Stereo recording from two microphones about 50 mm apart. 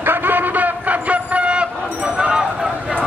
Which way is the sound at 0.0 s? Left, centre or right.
Right.